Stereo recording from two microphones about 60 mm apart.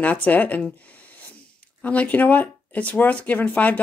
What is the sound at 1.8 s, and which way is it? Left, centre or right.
Speech, left.